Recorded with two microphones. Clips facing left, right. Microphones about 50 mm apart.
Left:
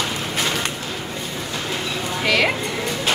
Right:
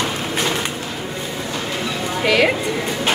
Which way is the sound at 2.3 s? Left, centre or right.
Centre.